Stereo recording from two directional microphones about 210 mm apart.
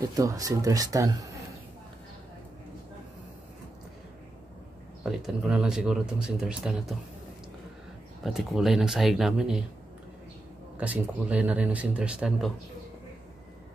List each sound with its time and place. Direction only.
0.0 s speech: 15° right (ahead or behind)
5.0 s speech: centre (ahead or behind)
8.2 s speech: centre (ahead or behind)
10.8 s speech: 5° right (ahead or behind)